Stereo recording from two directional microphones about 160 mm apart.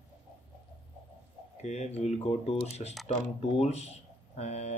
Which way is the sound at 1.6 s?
40° left (ahead or behind).